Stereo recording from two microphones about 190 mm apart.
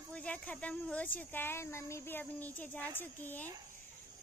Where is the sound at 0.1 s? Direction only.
5° left (ahead or behind).